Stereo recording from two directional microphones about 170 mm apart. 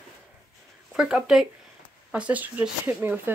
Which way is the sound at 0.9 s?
5° right (ahead or behind).